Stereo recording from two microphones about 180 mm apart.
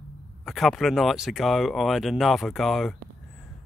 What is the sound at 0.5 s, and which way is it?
Speech, centre (ahead or behind).